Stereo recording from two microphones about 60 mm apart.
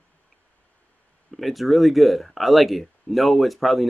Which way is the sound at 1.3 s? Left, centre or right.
Centre.